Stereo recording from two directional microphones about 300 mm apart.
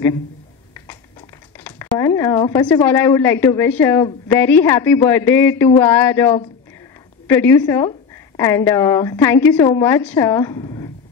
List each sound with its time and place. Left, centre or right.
1.6 s speech: centre